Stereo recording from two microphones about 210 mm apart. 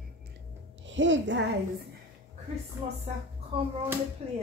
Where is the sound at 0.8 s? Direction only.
60° right (ahead or behind).